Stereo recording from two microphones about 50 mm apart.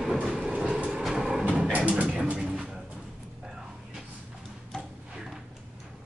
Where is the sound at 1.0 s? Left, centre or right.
Centre.